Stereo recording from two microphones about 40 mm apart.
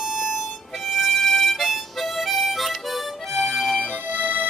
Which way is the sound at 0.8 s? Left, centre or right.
Centre.